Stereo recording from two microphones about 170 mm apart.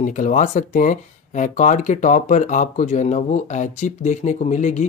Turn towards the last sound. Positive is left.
turn(degrees=45)  # may be behind; listen again after turning